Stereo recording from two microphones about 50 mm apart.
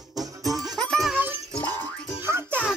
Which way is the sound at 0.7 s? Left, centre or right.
Centre.